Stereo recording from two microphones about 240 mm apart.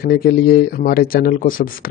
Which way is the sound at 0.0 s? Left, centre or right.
Left.